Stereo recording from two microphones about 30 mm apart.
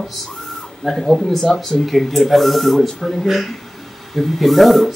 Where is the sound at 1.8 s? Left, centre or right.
Centre.